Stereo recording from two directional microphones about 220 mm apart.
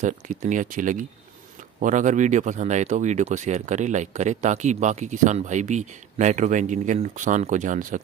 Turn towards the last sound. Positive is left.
turn(degrees=-35)  # may be behind; listen again after turning